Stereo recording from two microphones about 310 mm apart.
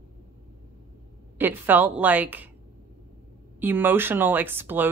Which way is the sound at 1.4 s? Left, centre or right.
Centre.